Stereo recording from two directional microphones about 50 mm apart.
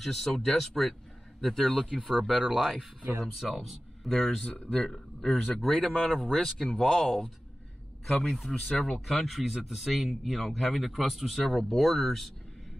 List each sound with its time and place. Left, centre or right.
0.0 s speech: centre
3.4 s speech: centre
4.5 s speech: left; by 8.7 s centre
8.7 s speech: centre
9.0 s speech: centre